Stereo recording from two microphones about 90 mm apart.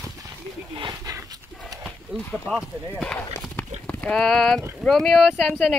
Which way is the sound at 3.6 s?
15° left (ahead or behind).